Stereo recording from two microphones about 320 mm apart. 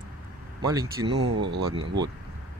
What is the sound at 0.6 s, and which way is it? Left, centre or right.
Speech, centre.